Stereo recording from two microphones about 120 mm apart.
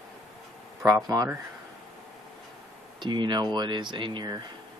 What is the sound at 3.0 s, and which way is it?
Speech, 40° right (ahead or behind).